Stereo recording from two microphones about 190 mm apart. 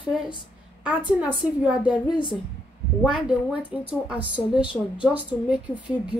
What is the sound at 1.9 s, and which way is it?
Speech, 25° left (ahead or behind).